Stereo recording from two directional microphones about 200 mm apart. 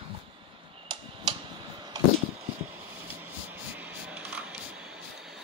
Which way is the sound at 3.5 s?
10° right (ahead or behind).